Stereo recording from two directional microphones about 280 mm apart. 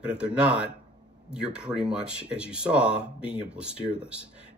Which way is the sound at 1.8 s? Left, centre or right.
Centre.